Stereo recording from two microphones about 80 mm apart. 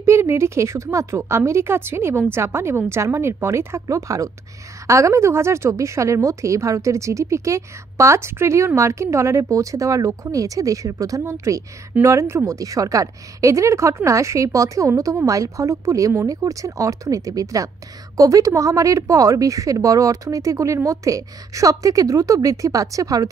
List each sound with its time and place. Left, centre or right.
0.0 s a woman's voice: right